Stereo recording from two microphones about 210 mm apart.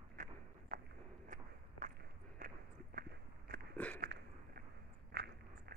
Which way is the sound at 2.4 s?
40° right (ahead or behind).